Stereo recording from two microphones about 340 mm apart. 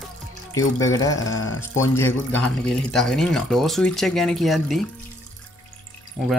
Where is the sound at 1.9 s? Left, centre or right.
Centre.